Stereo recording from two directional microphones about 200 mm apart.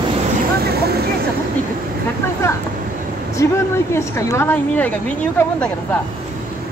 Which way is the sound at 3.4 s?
15° left (ahead or behind).